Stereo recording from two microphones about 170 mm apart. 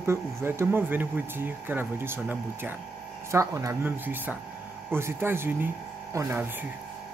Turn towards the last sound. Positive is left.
turn(degrees=-10)  # may be behind; listen again after turning